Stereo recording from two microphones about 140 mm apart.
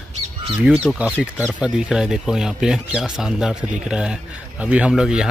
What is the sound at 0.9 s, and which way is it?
Speech, 10° right (ahead or behind).